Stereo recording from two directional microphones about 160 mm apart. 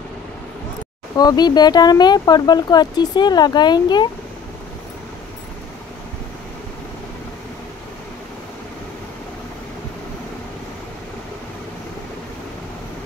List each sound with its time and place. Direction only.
1.1 s speech: 25° left (ahead or behind)